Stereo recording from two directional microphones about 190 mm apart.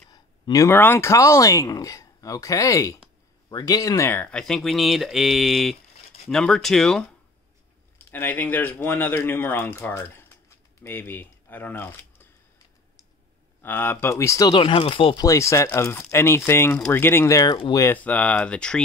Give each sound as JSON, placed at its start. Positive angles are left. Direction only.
{"t": 0.1, "sound": "speech", "side_deg": 20}
{"t": 8.1, "sound": "speech", "side_deg": 10}
{"t": 13.6, "sound": "speech", "side_deg": 10}